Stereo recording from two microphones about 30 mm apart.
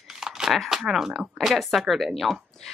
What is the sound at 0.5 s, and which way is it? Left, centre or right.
A woman's voice, centre.